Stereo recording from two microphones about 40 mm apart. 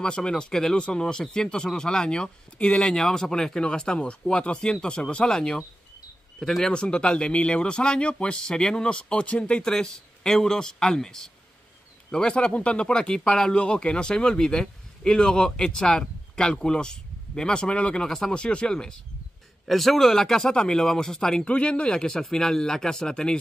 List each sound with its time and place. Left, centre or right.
0.0 s speech: centre
0.7 s speech: left
2.8 s speech: centre
6.4 s speech: centre
6.7 s speech: left
9.6 s speech: centre
18.0 s speech: centre
18.3 s speech: left
19.7 s speech: centre
21.5 s speech: left